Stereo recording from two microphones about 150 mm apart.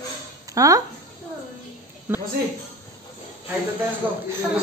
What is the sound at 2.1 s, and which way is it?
Speech, 15° right (ahead or behind).